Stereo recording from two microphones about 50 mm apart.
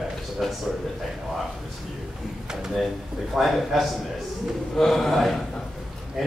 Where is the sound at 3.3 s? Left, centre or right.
Centre.